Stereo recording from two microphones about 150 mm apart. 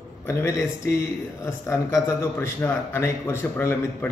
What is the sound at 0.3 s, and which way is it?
A man's voice, 20° left (ahead or behind).